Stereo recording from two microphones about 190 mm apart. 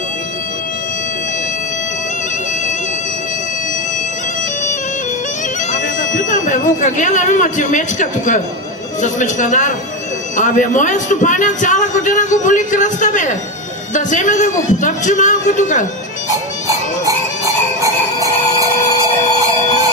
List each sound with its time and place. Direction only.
5.7 s a man's voice: 40° left (ahead or behind)
16.6 s music: 15° right (ahead or behind)